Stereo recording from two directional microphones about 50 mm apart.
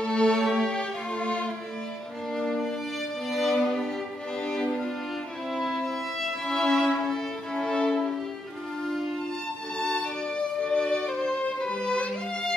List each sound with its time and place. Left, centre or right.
0.0 s music: centre
2.3 s music: centre
3.3 s violin: centre
4.5 s music: centre
5.5 s violin: centre
9.8 s music: centre